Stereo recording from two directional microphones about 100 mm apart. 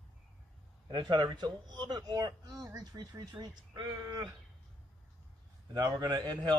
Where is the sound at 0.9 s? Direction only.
45° right (ahead or behind).